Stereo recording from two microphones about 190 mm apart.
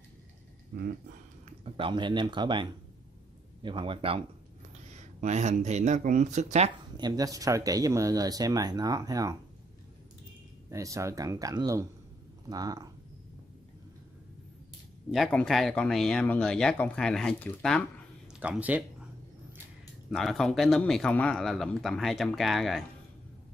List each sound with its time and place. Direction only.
1.6 s speech: 25° right (ahead or behind)
7.0 s speech: 20° right (ahead or behind)
10.7 s speech: 15° right (ahead or behind)
15.0 s speech: centre (ahead or behind)
18.3 s a sound: 5° right (ahead or behind)
20.1 s speech: centre (ahead or behind)